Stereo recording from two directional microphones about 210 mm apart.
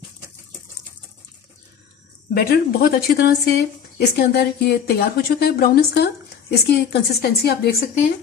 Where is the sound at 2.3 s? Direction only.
45° left (ahead or behind).